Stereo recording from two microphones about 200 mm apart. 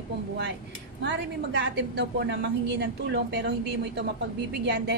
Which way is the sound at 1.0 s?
60° right (ahead or behind).